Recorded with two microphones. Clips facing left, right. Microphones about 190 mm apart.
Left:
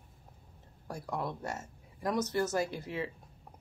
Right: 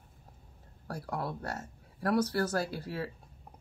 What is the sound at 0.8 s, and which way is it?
Speech, 15° left (ahead or behind).